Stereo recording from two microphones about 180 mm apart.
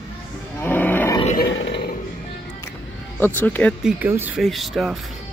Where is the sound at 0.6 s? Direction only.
10° left (ahead or behind).